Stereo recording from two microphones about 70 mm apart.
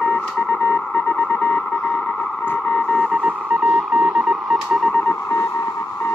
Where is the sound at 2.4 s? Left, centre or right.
Left.